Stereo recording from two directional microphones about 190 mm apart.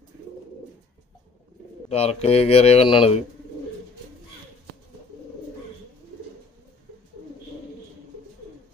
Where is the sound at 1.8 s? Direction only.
30° left (ahead or behind).